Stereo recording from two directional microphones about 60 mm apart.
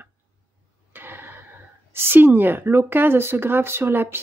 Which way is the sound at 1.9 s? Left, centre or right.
Right.